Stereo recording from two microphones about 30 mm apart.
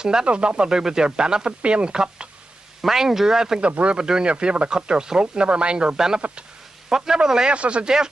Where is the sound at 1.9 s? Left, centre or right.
Right.